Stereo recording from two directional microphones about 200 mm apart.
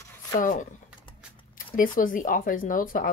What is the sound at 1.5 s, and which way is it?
Speech, 45° left (ahead or behind).